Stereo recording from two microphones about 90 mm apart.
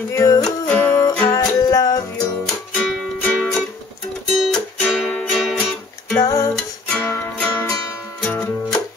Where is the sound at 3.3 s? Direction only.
10° left (ahead or behind).